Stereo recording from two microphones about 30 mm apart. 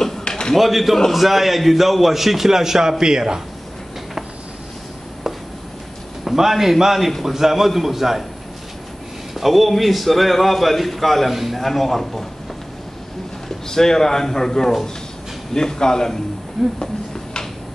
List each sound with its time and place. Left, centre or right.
0.6 s a man's voice: centre; by 3.4 s right
6.2 s a man's voice: centre
7.1 s a man's voice: centre
7.3 s a man's voice: centre
9.3 s a man's voice: centre
13.7 s a man's voice: centre
16.6 s a man's voice: centre